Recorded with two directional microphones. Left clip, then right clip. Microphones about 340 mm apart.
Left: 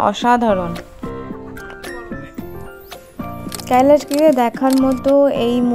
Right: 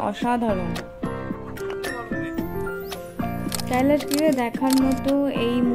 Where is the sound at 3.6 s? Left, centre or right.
Centre.